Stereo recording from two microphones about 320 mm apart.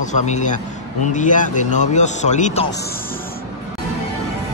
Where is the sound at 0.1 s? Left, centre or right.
Left.